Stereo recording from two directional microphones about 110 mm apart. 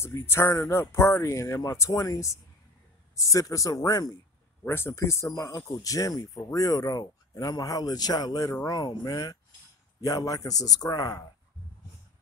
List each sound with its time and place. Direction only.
0.0 s speech: 25° left (ahead or behind)
4.6 s speech: 20° left (ahead or behind)